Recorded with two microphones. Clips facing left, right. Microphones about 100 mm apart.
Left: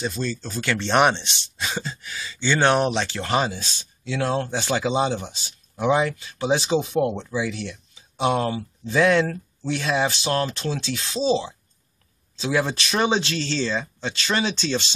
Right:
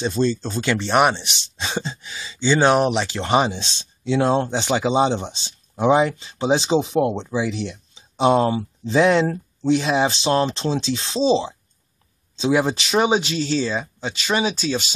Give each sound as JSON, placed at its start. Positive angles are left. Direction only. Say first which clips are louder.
{"t": 0.1, "sound": "speech", "louder": "right 7 dB", "side_deg": -25}